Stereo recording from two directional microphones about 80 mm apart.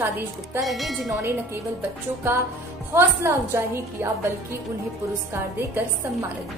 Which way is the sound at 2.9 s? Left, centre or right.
Right.